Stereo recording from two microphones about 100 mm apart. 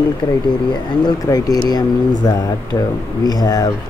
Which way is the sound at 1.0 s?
40° left (ahead or behind).